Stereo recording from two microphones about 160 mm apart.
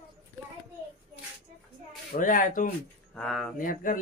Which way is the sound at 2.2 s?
55° left (ahead or behind).